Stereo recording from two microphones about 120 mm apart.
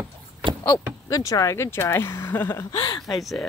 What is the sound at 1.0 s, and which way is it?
Speech, 30° left (ahead or behind).